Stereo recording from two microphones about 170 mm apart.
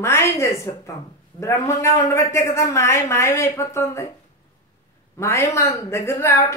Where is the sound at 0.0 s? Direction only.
15° left (ahead or behind).